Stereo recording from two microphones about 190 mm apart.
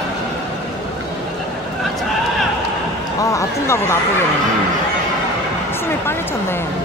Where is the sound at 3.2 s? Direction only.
15° left (ahead or behind).